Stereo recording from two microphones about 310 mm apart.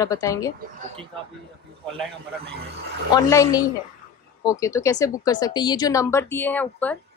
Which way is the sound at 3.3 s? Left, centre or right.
Centre.